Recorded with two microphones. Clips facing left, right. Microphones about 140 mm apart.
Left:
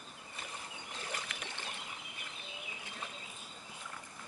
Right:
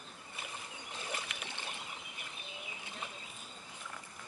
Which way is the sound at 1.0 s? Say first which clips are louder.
Right 1 dB; 15° right (ahead or behind).